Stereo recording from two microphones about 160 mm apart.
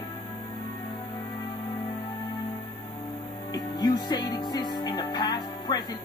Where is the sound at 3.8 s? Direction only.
25° left (ahead or behind).